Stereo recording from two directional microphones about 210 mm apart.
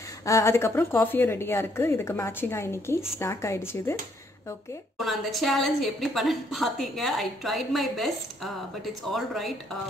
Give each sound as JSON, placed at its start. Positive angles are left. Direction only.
{"t": 0.2, "sound": "a woman's voice", "side_deg": 15}
{"t": 4.9, "sound": "a woman's voice", "side_deg": 0}